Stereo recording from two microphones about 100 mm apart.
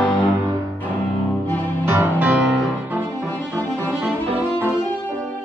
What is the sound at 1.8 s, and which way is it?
Music, 20° right (ahead or behind).